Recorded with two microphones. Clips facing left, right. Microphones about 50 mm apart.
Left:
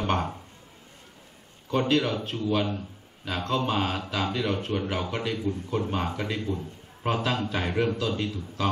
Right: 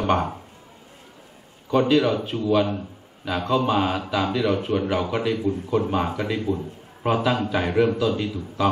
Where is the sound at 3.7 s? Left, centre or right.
Centre.